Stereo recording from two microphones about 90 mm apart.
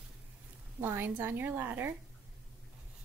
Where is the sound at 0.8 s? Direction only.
25° right (ahead or behind).